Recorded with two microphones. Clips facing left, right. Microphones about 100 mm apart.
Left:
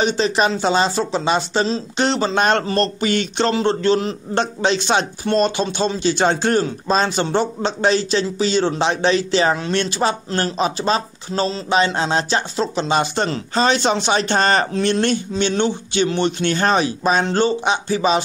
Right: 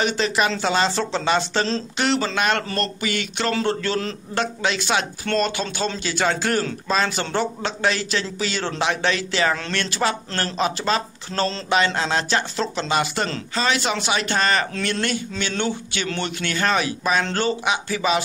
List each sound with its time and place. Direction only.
0.0 s a man's voice: 25° left (ahead or behind)
3.5 s a man's voice: 20° left (ahead or behind)